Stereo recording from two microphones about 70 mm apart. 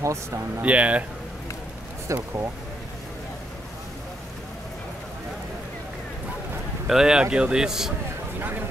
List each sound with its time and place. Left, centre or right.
0.0 s speech: right
0.6 s speech: centre
2.1 s speech: right
6.9 s speech: centre